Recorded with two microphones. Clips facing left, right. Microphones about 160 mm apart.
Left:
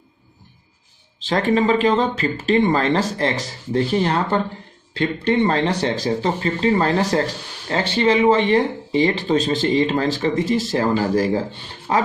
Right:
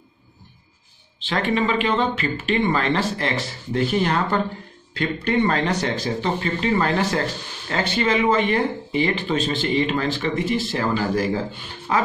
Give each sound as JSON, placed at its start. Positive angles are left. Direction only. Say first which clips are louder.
{"t": 1.2, "sound": "speech", "louder": "left 4 dB", "side_deg": 40}